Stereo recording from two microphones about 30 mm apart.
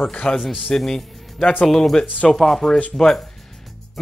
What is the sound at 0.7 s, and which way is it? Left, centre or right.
Speech, left.